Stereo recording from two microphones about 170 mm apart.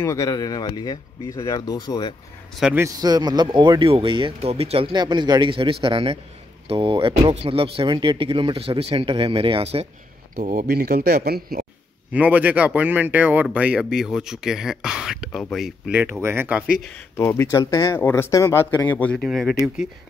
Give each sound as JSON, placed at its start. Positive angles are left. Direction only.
{"t": 0.0, "sound": "speech", "side_deg": 20}
{"t": 2.6, "sound": "speech", "side_deg": -10}
{"t": 3.0, "sound": "speech", "side_deg": -25}
{"t": 10.3, "sound": "speech", "side_deg": -55}
{"t": 12.1, "sound": "speech", "side_deg": -10}
{"t": 17.2, "sound": "speech", "side_deg": 15}